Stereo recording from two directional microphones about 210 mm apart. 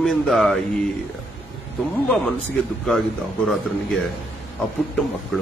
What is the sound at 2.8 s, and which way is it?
A man's voice, centre (ahead or behind).